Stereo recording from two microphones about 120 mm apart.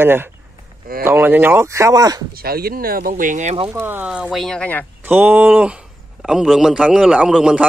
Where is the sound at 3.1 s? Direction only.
90° right.